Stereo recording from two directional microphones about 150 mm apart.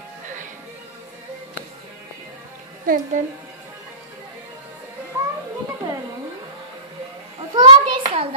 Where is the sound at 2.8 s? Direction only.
65° right (ahead or behind).